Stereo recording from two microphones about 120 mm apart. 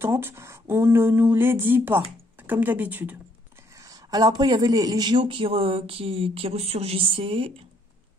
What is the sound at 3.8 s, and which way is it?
Speech, 35° right (ahead or behind).